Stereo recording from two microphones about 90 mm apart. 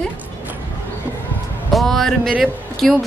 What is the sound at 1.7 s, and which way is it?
Music, centre (ahead or behind).